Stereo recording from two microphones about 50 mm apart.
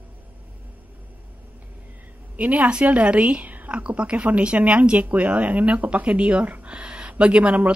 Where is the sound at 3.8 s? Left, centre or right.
Right.